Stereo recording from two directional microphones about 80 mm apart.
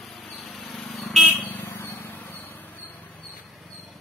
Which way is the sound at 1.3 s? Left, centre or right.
Left.